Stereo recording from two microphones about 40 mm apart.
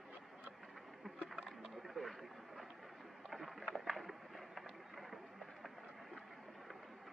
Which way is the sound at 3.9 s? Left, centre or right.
Centre.